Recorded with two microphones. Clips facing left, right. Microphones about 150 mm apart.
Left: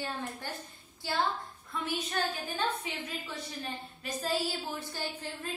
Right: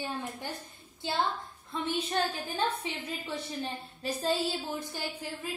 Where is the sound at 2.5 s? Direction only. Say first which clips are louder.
Right 2 dB; 30° right (ahead or behind).